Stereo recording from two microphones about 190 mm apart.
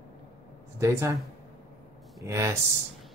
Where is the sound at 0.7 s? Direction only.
15° right (ahead or behind).